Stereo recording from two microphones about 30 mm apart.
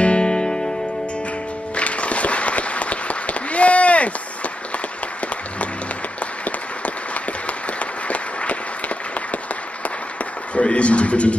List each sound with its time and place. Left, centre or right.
0.0 s music: left
1.8 s applause: left
7.8 s applause: left
10.6 s a sound: left